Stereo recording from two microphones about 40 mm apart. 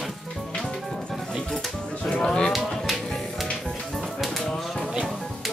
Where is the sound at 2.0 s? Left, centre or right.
Centre.